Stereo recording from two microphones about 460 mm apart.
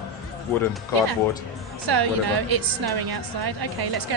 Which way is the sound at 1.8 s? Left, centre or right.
Right.